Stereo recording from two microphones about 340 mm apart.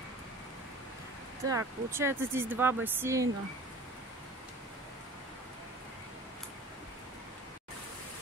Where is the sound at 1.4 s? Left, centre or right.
Centre.